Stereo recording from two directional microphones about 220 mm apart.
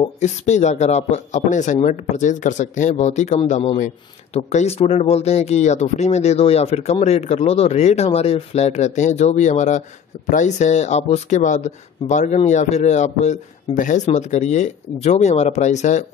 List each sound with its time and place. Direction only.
0.2 s speech: 30° left (ahead or behind)